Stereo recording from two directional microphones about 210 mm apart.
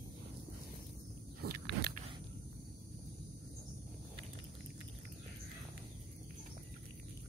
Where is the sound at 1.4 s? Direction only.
50° right (ahead or behind).